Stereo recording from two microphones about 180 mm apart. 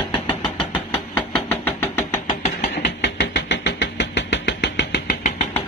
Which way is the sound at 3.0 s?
80° left.